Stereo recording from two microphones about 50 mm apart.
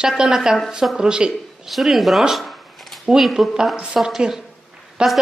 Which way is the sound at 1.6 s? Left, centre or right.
Centre.